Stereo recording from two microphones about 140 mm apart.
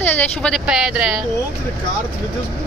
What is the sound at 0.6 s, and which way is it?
Speech, 5° right (ahead or behind).